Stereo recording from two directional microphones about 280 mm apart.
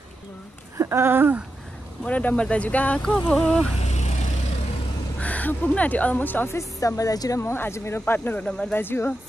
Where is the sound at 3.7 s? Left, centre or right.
Left.